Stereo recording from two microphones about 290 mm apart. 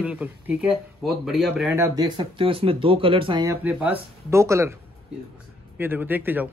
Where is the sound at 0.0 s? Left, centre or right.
Centre.